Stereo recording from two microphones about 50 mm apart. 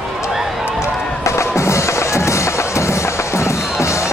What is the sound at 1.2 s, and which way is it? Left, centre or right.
Music, left.